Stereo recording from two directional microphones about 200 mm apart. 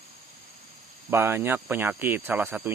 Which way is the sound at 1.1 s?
10° right (ahead or behind).